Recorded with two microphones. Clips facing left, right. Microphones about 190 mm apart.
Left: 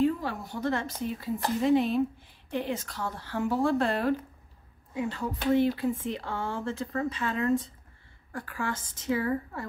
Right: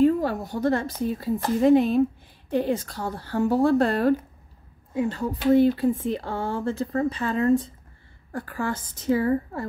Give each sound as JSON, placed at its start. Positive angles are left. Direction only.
{"t": 0.0, "sound": "speech", "side_deg": -45}